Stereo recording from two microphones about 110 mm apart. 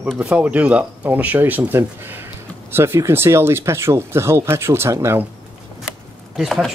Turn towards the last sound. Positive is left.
turn(degrees=0)  # may be behind; listen again after turning